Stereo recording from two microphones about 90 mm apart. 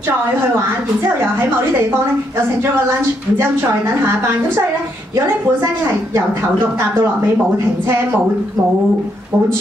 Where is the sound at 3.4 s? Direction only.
25° right (ahead or behind).